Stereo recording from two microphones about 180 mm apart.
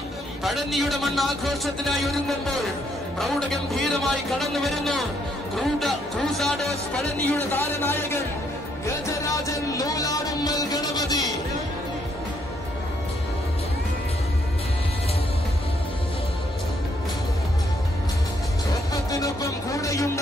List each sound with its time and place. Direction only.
0.4 s a man's voice: centre (ahead or behind)
8.8 s music: 15° left (ahead or behind)
19.0 s speech: 20° left (ahead or behind)